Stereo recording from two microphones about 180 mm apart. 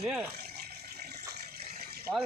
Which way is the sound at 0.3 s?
60° right (ahead or behind).